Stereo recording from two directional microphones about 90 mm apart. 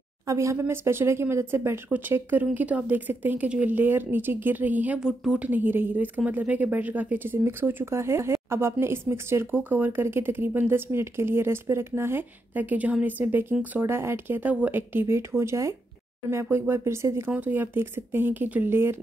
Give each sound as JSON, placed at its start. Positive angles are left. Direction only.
{"t": 0.3, "sound": "speech", "side_deg": -35}
{"t": 5.0, "sound": "a woman's voice", "side_deg": -10}
{"t": 5.5, "sound": "speech", "side_deg": -20}